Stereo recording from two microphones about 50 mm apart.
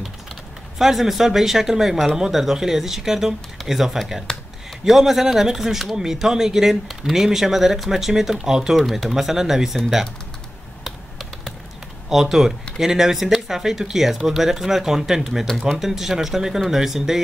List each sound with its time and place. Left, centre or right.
0.7 s speech: centre
4.3 s speech: centre
4.8 s speech: centre
10.8 s computer keyboard: centre
12.1 s speech: centre